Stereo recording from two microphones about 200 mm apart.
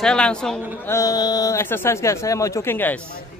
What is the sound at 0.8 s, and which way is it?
Speech, 15° left (ahead or behind).